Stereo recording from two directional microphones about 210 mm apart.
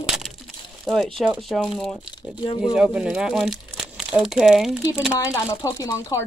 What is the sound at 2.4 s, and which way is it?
Speech, 25° left (ahead or behind).